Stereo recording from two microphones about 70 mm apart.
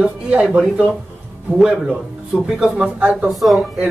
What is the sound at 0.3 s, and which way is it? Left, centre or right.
Speech, centre.